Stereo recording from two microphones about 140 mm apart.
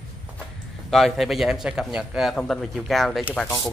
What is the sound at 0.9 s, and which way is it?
A man's voice, centre (ahead or behind).